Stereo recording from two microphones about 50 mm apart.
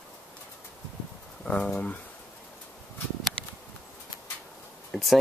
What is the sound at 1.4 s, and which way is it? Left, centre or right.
Speech, left.